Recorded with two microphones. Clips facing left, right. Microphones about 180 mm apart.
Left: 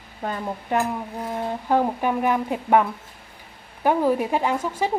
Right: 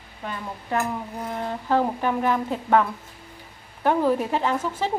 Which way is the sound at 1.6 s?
15° left (ahead or behind).